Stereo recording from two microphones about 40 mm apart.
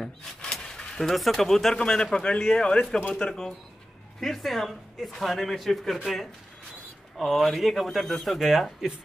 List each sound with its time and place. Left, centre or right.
0.0 s speech: centre
0.7 s a sound: centre
1.0 s speech: centre
1.8 s speech: centre
4.2 s speech: centre
7.2 s speech: centre